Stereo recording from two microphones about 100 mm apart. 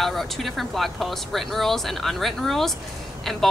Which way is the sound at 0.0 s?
Centre (ahead or behind).